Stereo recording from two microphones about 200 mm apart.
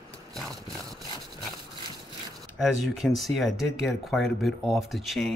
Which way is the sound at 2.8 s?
Centre (ahead or behind).